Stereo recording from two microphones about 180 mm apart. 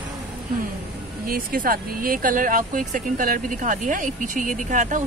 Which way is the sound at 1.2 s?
55° right (ahead or behind).